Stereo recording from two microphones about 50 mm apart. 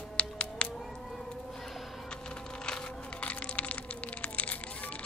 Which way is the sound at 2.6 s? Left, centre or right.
Left.